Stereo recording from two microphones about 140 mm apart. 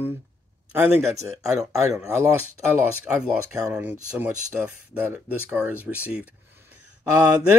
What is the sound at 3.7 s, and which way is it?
Speech, 10° right (ahead or behind).